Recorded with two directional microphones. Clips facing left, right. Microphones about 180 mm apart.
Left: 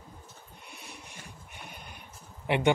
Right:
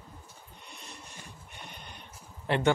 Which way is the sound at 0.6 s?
10° left (ahead or behind).